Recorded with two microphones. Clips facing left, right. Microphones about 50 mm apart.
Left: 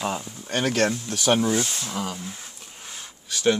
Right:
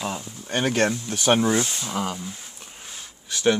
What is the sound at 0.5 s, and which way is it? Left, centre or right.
Speech, right.